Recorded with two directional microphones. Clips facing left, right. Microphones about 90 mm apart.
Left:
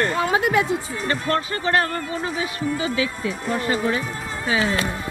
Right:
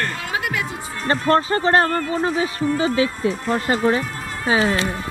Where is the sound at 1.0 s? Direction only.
35° right (ahead or behind).